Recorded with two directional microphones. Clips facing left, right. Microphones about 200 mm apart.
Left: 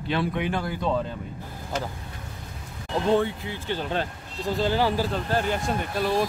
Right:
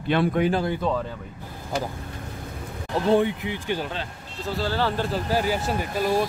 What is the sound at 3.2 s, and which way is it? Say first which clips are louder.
Speech: right 3 dB; 15° right (ahead or behind).